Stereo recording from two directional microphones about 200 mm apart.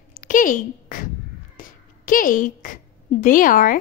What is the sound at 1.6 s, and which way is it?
A woman's voice, 45° left (ahead or behind).